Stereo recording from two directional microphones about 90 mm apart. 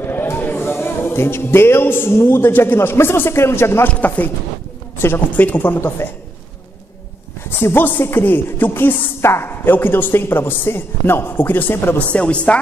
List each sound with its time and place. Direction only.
0.0 s a man's voice: 25° left (ahead or behind)
7.4 s speech: 25° left (ahead or behind)